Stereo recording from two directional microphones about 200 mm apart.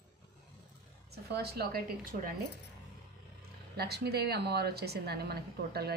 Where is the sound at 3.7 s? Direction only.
55° right (ahead or behind).